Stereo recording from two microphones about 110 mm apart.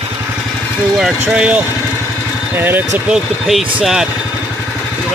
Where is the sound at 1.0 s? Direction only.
5° right (ahead or behind).